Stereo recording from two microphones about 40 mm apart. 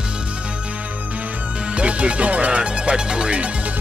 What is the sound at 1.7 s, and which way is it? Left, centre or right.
Music, right.